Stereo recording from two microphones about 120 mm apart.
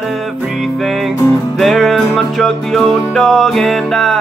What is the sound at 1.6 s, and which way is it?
Music, centre (ahead or behind).